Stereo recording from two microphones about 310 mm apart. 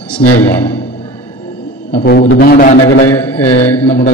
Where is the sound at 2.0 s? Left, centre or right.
Left.